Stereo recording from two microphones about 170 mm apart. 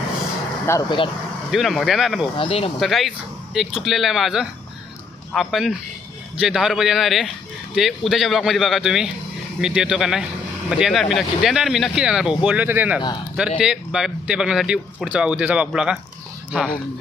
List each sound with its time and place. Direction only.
0.7 s speech: 20° left (ahead or behind)
1.5 s speech: centre (ahead or behind)
2.3 s speech: 35° left (ahead or behind)
2.8 s speech: centre (ahead or behind)